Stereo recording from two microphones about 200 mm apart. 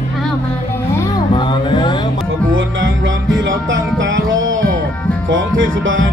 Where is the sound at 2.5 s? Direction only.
70° right (ahead or behind).